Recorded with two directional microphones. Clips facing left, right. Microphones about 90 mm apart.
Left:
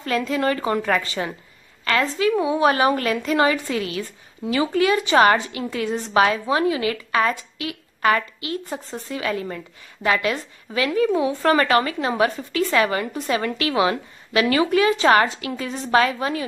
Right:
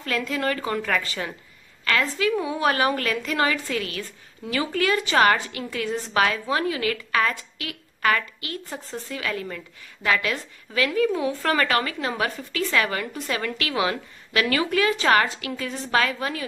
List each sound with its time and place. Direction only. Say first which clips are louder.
0.0 s a woman's voice: left 4 dB; 25° left (ahead or behind)